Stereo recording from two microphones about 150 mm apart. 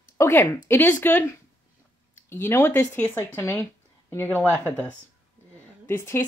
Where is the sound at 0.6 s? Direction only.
15° left (ahead or behind).